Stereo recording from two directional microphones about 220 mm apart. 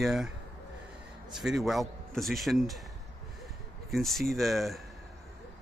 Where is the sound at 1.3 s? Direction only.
Centre (ahead or behind).